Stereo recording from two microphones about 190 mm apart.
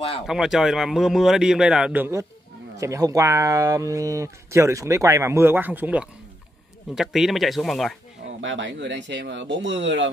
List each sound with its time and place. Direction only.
0.3 s speech: centre (ahead or behind)
8.4 s speech: 80° right